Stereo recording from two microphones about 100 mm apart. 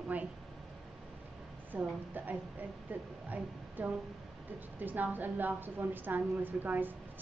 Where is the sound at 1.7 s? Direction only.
15° right (ahead or behind).